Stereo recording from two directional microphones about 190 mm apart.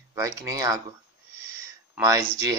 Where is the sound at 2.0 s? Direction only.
15° right (ahead or behind).